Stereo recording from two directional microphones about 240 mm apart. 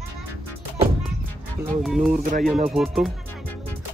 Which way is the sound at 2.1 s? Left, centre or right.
Right.